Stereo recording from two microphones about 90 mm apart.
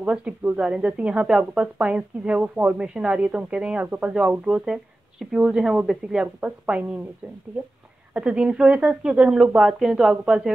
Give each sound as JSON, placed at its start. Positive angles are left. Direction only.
{"t": 0.0, "sound": "speech", "side_deg": -15}